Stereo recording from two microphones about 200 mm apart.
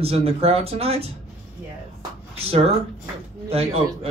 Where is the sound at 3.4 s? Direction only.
30° right (ahead or behind).